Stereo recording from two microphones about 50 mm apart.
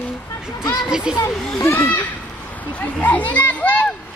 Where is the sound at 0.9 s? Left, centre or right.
Centre.